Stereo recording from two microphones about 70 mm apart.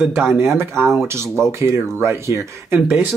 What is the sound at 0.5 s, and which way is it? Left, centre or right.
Speech, right.